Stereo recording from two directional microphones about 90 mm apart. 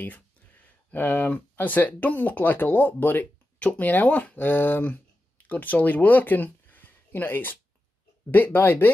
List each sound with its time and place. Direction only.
0.9 s speech: 20° left (ahead or behind)